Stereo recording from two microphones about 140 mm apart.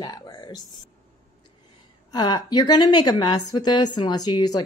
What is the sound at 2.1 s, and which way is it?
Speech, 30° left (ahead or behind).